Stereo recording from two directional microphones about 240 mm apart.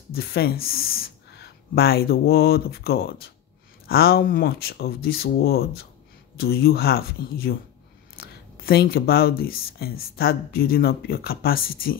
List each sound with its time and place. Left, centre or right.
0.1 s speech: left